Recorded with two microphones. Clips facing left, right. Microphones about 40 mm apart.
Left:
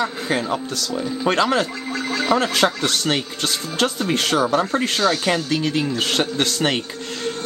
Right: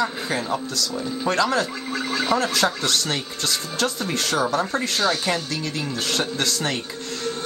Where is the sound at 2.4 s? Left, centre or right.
Left.